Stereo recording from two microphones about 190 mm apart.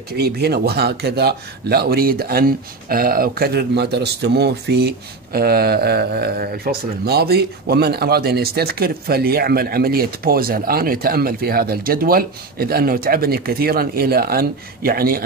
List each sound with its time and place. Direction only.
0.1 s speech: 55° right (ahead or behind)